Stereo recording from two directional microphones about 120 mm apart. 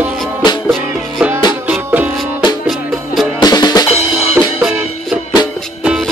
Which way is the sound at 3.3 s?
35° left (ahead or behind).